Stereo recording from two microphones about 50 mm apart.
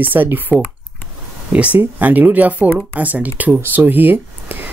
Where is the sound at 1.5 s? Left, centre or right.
Right.